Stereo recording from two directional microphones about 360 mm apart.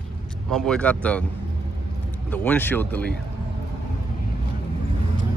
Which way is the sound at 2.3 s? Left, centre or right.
Centre.